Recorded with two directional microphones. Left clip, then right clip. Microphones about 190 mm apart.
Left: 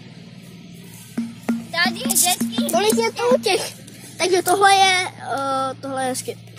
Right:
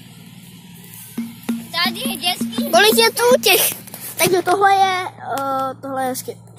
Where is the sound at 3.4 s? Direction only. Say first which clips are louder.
Right 5 dB; 10° right (ahead or behind).